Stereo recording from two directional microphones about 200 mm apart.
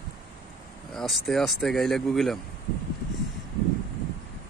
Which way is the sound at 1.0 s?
Centre (ahead or behind).